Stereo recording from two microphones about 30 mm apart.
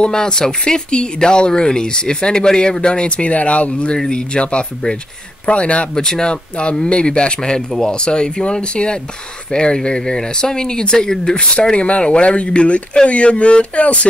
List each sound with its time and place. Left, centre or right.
0.1 s speech: left
4.1 s speech: left
5.9 s speech: left
6.6 s speech: left
11.7 s speech: left